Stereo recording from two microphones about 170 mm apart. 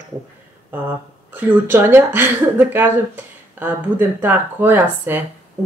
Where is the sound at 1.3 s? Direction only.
10° right (ahead or behind).